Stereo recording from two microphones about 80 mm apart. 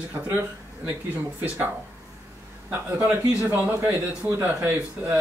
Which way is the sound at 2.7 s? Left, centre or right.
Right.